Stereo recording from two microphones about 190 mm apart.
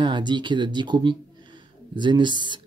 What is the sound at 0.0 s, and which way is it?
Speech, 25° right (ahead or behind).